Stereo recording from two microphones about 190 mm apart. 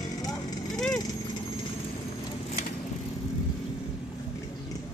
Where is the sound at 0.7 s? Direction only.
Centre (ahead or behind).